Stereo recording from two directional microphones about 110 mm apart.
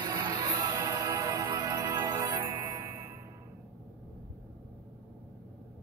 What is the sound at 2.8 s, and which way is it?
Music, 35° right (ahead or behind).